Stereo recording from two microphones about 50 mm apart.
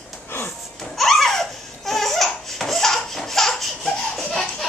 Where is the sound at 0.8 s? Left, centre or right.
Centre.